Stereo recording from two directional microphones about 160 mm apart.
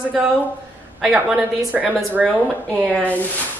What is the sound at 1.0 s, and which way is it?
A woman's voice, centre (ahead or behind).